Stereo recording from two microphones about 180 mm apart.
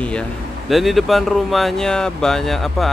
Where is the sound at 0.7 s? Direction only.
Centre (ahead or behind).